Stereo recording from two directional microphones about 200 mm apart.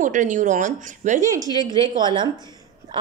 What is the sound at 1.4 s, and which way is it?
Speech, 20° left (ahead or behind).